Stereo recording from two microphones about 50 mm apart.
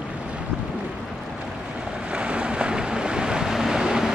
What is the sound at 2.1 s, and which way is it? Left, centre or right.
Waves, right.